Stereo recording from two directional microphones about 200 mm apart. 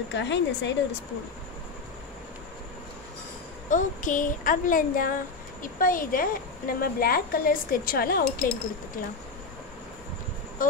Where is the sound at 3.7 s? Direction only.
40° left (ahead or behind).